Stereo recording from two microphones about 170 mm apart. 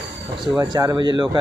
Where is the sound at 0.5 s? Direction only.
25° right (ahead or behind).